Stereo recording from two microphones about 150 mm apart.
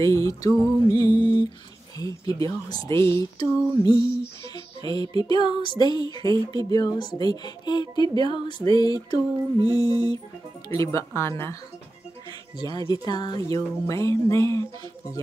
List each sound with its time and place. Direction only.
0.0 s speech: 20° left (ahead or behind)
4.6 s music: 25° left (ahead or behind)
5.3 s speech: 30° left (ahead or behind)